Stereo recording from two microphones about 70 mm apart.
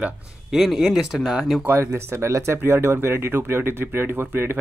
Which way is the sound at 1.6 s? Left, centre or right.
Right.